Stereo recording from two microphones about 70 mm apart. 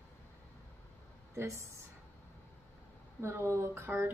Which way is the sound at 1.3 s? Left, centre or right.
Right.